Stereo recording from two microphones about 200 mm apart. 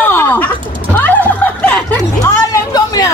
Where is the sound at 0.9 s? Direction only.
10° left (ahead or behind).